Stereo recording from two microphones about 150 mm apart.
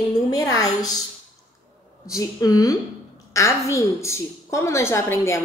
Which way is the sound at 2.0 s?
25° left (ahead or behind).